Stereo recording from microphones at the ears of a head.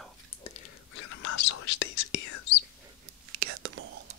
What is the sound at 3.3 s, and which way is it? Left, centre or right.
Whispering, right.